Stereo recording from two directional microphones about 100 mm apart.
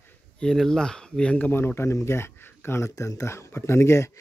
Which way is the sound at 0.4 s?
5° left (ahead or behind).